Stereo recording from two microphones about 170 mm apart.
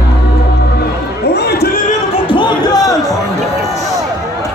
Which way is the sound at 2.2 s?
30° left (ahead or behind).